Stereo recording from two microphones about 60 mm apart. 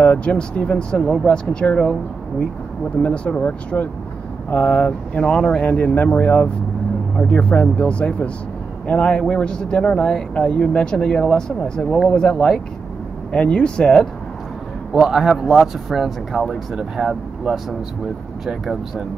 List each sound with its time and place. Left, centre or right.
0.0 s speech: left
3.0 s speech: left
14.9 s speech: centre